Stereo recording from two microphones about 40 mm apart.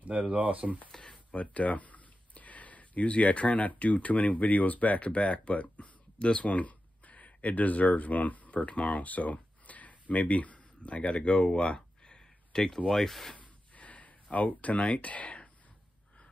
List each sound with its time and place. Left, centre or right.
0.0 s speech: right
0.9 s a sound: centre
1.3 s speech: left; by 13.4 s centre
13.4 s gasp: left
14.3 s speech: left